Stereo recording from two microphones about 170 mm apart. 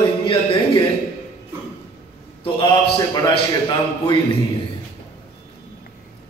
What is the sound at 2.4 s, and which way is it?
Speech, 30° left (ahead or behind).